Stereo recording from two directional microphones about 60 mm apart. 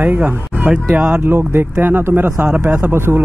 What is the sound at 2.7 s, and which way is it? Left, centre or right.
Speech, right.